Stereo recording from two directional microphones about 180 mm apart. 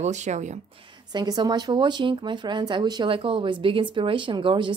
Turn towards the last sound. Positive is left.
turn(degrees=-25)  # may be behind; listen again after turning